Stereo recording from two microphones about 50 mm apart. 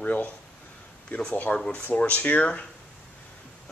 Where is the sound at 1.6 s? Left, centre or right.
Centre.